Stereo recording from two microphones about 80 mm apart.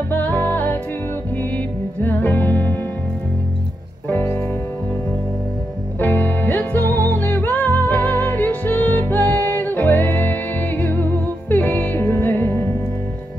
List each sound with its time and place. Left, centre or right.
0.1 s music: left
2.0 s music: left
4.1 s music: left
5.9 s music: left